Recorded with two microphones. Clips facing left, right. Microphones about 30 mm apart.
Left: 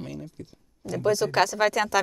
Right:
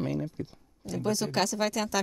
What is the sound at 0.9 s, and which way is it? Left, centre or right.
Speech, centre.